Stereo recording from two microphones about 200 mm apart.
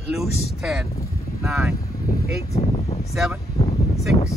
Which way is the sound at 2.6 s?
30° left (ahead or behind).